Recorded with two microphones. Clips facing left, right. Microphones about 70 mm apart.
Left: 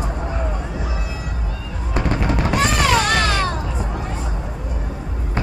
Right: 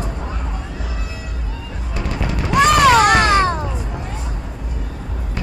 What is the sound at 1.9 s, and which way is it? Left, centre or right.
Music, left.